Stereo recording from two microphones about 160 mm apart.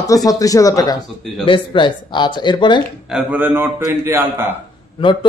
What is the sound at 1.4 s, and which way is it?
Speech, 30° left (ahead or behind).